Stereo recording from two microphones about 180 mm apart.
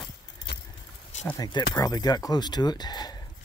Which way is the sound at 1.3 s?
20° left (ahead or behind).